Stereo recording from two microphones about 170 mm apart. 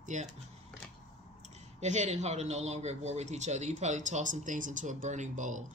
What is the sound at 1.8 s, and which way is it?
A man's voice, 40° right (ahead or behind).